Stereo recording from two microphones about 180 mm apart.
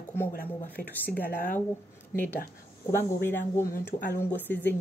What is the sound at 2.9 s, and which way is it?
A woman's voice, 15° left (ahead or behind).